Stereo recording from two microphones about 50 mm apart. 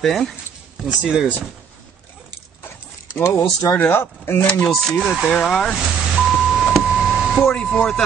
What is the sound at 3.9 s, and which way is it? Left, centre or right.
Speech, left.